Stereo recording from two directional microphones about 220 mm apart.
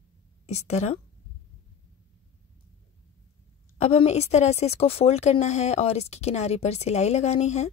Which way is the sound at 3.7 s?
30° left (ahead or behind).